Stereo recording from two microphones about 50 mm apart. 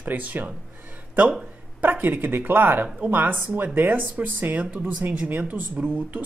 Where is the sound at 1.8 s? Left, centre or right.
Right.